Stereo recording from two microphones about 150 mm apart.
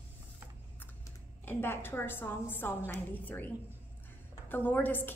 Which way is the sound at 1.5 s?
15° left (ahead or behind).